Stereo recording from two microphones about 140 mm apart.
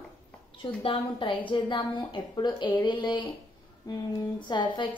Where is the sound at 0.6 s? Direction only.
35° left (ahead or behind).